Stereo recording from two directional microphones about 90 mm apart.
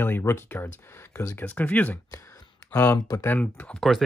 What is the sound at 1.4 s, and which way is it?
Speech, 15° left (ahead or behind).